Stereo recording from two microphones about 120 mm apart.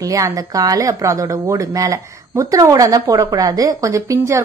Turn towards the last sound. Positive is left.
turn(degrees=-25)  # may be behind; listen again after turning